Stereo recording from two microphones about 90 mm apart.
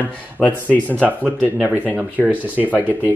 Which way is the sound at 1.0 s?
20° right (ahead or behind).